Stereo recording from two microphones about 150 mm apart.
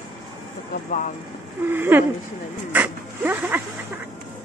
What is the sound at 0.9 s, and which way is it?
Speech, 60° left (ahead or behind).